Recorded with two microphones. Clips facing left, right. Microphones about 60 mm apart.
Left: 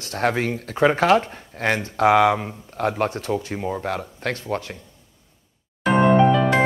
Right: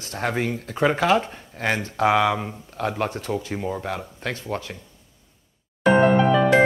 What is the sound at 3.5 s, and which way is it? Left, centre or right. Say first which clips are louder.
Speech: left 1 dB; centre.